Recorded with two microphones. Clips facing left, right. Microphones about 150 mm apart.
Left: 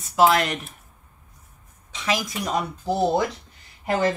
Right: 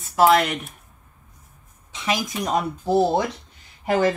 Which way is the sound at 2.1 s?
Centre (ahead or behind).